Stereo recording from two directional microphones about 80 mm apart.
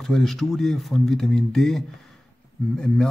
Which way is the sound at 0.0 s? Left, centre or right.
Centre.